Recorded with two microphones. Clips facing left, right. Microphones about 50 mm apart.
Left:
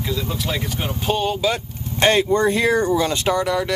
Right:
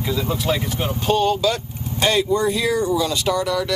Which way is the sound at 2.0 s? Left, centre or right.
Left.